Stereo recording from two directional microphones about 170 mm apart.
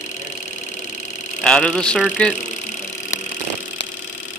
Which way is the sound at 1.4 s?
5° left (ahead or behind).